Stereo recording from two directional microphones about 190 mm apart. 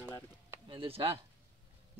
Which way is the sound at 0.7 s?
30° right (ahead or behind).